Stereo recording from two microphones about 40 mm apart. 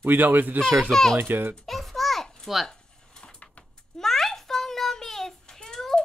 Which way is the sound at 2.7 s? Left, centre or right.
Centre.